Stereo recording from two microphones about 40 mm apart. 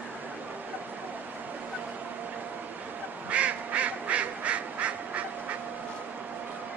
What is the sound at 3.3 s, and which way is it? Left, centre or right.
Duck, right.